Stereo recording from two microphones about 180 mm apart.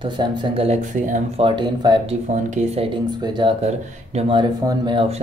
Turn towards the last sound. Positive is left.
turn(degrees=-25)  # may be behind; listen again after turning